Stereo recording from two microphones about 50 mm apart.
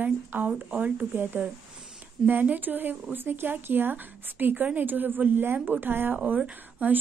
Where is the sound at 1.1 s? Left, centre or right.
Right.